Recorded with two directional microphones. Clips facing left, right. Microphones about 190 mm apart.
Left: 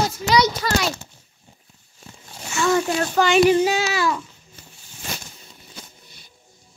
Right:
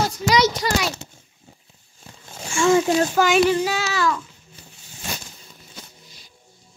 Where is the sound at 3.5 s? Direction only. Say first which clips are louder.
Left 4 dB; 20° left (ahead or behind).